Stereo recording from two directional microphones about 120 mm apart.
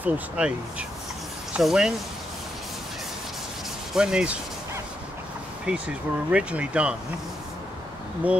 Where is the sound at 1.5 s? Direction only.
5° right (ahead or behind).